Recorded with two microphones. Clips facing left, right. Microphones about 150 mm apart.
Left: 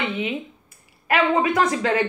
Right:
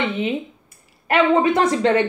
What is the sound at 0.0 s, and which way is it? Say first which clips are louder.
Speech: right 4 dB; 25° right (ahead or behind).